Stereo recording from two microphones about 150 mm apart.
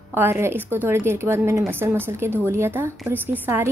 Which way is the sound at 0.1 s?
15° right (ahead or behind).